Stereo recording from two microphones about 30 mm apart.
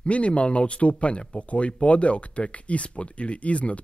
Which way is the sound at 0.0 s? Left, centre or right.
Left.